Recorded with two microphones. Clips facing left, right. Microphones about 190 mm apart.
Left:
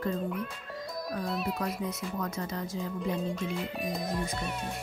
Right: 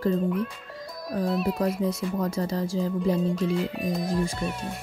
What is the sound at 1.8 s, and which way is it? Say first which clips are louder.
Speech: right 7 dB; 35° right (ahead or behind).